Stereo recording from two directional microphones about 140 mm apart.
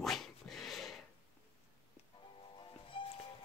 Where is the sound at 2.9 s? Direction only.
35° left (ahead or behind).